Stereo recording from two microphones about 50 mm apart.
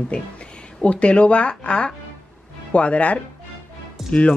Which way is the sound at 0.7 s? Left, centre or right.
Left.